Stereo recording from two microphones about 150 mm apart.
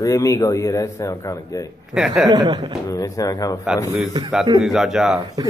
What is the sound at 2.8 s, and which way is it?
Speech, 25° left (ahead or behind).